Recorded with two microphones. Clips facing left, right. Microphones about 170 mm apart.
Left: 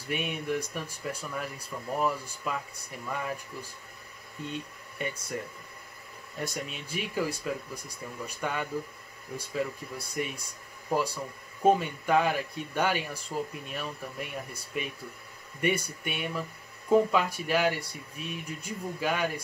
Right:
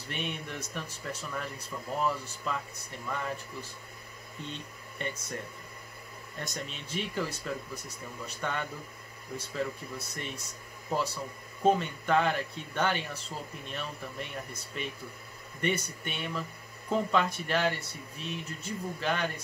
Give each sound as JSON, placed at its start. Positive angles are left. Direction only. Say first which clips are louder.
{"t": 0.1, "sound": "speech", "louder": "left 6 dB", "side_deg": 10}
{"t": 4.5, "sound": "speech", "louder": "left 8 dB", "side_deg": 10}
{"t": 6.3, "sound": "speech", "louder": "left 4 dB", "side_deg": 10}